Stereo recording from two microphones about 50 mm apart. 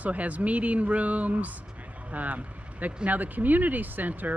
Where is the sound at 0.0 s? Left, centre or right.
Right.